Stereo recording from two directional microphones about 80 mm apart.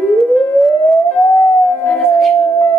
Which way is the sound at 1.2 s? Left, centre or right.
Left.